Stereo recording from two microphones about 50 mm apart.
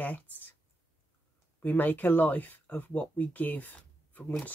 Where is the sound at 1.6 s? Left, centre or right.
Left.